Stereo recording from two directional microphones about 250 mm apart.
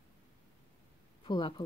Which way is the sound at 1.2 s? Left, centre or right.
Centre.